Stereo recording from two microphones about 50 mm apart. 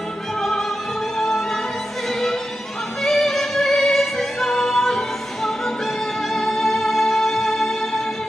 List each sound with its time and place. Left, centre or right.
0.4 s music: centre